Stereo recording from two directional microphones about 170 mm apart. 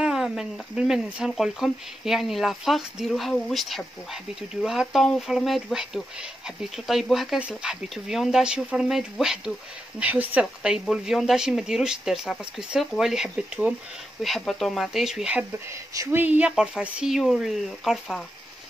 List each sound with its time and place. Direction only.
0.0 s speech: 5° right (ahead or behind)
15.7 s speech: 20° right (ahead or behind); by 18.2 s centre (ahead or behind)